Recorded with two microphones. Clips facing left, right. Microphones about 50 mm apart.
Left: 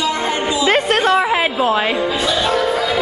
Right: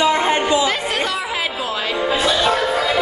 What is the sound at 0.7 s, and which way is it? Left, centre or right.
Chatter, left.